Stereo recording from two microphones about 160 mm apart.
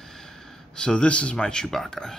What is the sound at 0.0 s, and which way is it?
Speech, centre (ahead or behind).